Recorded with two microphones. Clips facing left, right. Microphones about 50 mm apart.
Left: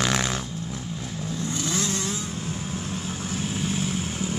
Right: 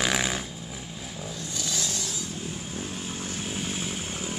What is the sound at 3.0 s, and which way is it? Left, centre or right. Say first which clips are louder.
Vehicle: left 4 dB; centre.